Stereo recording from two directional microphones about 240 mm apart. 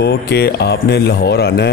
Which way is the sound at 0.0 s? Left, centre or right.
Left.